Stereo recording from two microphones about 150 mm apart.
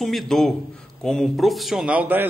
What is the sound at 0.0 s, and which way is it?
A man's voice, centre (ahead or behind).